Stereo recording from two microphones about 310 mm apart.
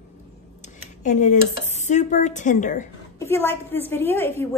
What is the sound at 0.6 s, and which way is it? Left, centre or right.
Dishes, left.